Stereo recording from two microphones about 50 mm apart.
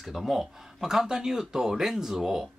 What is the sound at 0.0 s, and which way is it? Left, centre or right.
Speech, centre.